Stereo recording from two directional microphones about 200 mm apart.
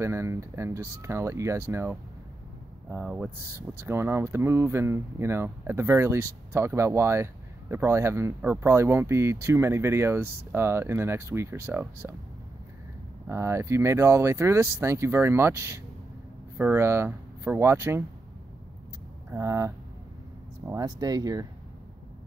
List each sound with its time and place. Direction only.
0.0 s speech: 15° right (ahead or behind)
13.3 s speech: 15° right (ahead or behind)
19.3 s speech: 15° right (ahead or behind)